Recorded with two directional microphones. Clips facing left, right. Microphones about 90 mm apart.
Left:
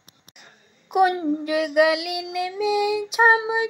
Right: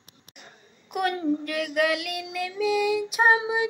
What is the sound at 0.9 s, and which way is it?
Child singing, 15° left (ahead or behind).